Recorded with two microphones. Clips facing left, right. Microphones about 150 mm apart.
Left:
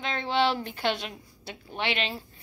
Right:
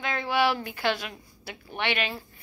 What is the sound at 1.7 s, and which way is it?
Speech, 25° left (ahead or behind).